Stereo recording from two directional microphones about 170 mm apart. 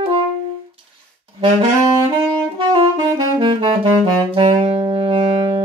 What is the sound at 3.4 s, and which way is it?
Saxophone, 30° right (ahead or behind).